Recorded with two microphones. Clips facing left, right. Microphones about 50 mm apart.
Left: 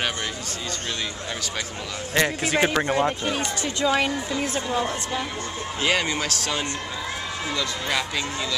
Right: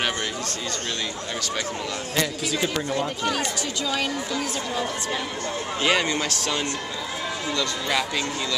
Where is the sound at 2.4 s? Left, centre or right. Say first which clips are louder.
Left 4 dB; left.